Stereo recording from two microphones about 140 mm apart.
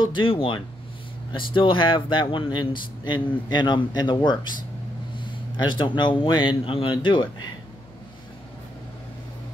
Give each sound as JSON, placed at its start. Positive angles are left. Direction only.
{"t": 0.0, "sound": "speech", "side_deg": 35}
{"t": 5.7, "sound": "speech", "side_deg": 35}